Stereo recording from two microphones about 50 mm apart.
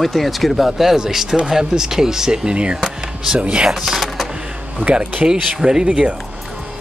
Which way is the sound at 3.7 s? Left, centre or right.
Centre.